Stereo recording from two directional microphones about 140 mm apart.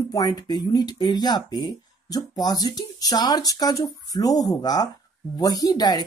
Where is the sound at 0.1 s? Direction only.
25° left (ahead or behind).